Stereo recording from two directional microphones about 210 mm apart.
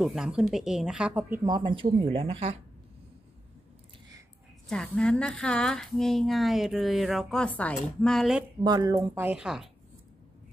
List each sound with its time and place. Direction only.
0.0 s speech: centre (ahead or behind)
1.4 s speech: 20° right (ahead or behind)
4.6 s speech: 5° left (ahead or behind)
8.6 s a woman's voice: 15° right (ahead or behind)